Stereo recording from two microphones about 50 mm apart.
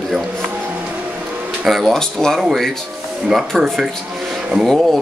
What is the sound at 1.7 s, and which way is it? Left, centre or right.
Speech, centre.